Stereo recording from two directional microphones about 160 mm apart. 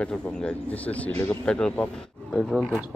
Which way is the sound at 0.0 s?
5° left (ahead or behind).